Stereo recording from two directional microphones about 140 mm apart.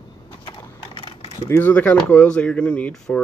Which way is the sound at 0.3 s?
35° left (ahead or behind).